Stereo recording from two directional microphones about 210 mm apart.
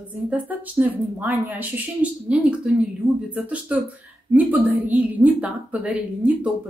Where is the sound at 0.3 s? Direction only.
5° right (ahead or behind).